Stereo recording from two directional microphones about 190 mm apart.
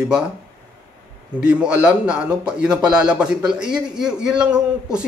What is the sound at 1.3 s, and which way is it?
A man's voice, 5° right (ahead or behind).